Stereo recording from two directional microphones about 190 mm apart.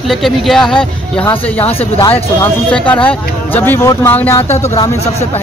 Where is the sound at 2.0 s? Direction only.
25° left (ahead or behind).